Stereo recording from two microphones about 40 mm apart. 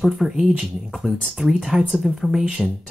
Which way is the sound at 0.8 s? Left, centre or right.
Centre.